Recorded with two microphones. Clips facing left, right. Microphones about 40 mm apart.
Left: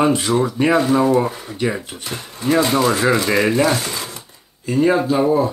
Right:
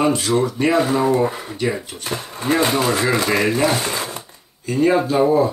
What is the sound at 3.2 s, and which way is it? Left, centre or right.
Dishes, centre.